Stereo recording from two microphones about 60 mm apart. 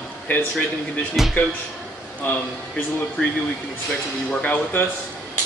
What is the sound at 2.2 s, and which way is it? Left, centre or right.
Speech, left.